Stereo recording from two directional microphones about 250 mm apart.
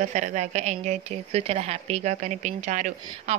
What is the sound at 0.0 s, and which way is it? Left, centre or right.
A woman's voice, right.